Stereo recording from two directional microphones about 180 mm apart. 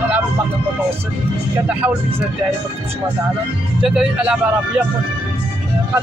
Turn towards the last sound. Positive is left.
turn(degrees=-5)  # may be behind; listen again after turning